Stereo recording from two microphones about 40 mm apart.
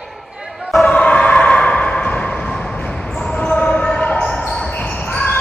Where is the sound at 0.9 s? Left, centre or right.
Left.